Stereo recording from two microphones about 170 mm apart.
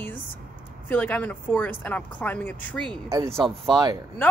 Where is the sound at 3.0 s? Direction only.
15° right (ahead or behind).